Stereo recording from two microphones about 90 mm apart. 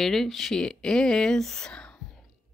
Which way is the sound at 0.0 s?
5° left (ahead or behind).